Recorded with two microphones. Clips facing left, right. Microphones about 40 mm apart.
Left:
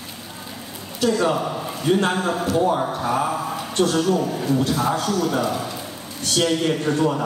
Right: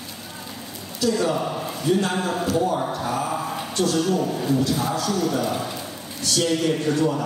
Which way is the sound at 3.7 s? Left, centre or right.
Left.